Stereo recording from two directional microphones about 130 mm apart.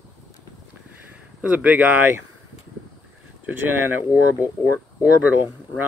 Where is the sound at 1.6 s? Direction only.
10° right (ahead or behind).